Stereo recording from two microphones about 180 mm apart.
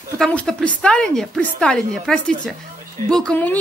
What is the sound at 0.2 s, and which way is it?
A woman's voice, 5° left (ahead or behind).